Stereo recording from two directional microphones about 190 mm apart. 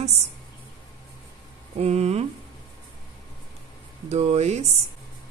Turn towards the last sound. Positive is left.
turn(degrees=-35)  # may be behind; listen again after turning